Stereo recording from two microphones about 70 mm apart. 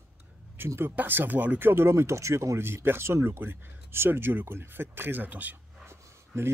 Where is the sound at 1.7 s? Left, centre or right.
Right.